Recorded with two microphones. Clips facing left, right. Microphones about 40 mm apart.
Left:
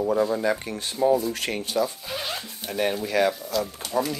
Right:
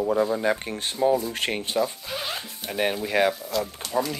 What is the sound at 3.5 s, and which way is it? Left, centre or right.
Speech, centre.